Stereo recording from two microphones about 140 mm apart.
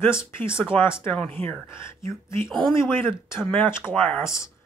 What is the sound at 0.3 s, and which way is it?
Speech, 15° left (ahead or behind).